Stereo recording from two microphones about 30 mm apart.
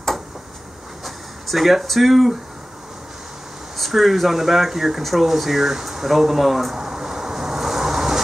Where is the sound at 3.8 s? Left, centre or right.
Centre.